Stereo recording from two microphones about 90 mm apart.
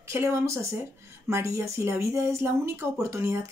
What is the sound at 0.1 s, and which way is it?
Speech, 30° right (ahead or behind).